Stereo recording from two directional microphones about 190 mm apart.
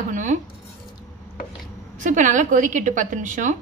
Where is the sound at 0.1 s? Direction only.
40° right (ahead or behind).